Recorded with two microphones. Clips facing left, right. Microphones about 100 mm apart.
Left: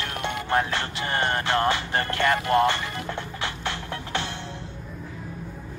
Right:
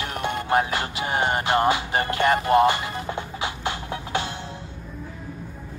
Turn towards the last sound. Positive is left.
turn(degrees=-15)  # may be behind; listen again after turning